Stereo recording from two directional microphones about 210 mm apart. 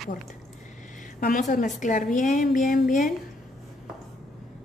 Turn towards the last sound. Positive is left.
turn(degrees=40)  # may be behind; listen again after turning